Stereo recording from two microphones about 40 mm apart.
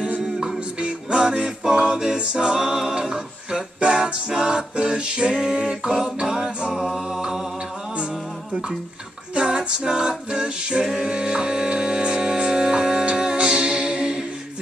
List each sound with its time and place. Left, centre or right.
0.7 s music: right
6.7 s music: centre
9.3 s a capella: right